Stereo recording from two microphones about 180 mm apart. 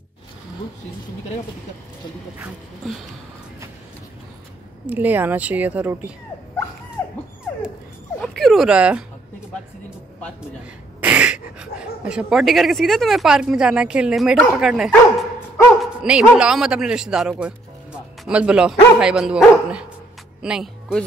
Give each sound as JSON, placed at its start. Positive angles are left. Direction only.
{"t": 4.8, "sound": "speech", "side_deg": -10}
{"t": 8.2, "sound": "dog", "side_deg": 0}
{"t": 11.0, "sound": "speech", "side_deg": -10}